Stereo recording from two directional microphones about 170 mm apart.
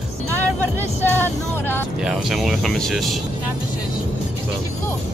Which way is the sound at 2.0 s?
5° right (ahead or behind).